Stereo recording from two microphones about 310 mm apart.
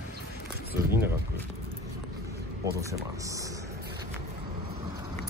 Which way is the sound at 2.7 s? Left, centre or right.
Centre.